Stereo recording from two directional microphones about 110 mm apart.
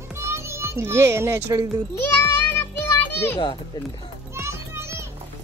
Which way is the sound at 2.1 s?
20° left (ahead or behind).